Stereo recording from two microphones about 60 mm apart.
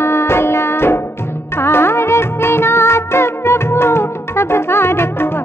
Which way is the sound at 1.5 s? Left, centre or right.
Left.